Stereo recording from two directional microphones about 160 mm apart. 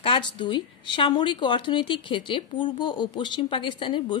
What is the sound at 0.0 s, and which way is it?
Speech, 30° left (ahead or behind).